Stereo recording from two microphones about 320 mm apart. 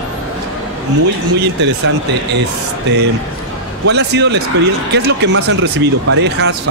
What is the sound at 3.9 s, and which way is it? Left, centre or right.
Speech, right.